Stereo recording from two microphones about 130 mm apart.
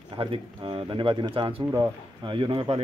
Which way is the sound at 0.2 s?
40° right (ahead or behind).